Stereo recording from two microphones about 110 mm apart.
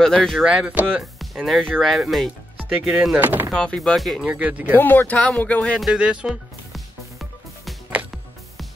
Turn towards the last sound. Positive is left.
turn(degrees=0)  # may be behind; listen again after turning